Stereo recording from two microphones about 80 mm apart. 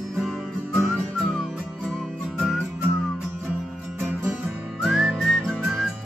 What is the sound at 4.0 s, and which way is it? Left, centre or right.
Music, right.